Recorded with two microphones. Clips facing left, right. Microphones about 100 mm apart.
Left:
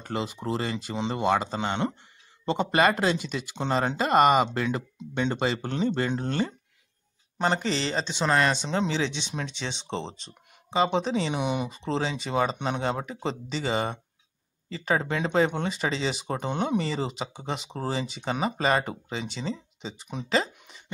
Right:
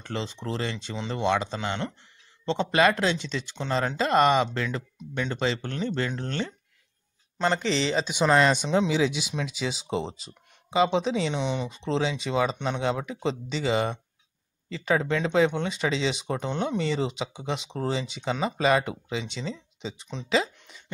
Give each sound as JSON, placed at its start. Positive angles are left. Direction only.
{"t": 0.0, "sound": "speech", "side_deg": 5}
{"t": 4.9, "sound": "speech", "side_deg": 20}
{"t": 5.3, "sound": "speech", "side_deg": 5}
{"t": 7.6, "sound": "speech", "side_deg": 0}
{"t": 8.1, "sound": "speech", "side_deg": -15}